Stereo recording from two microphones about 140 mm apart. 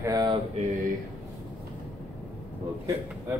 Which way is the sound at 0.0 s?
25° right (ahead or behind).